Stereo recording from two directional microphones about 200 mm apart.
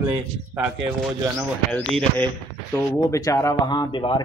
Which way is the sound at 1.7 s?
5° left (ahead or behind).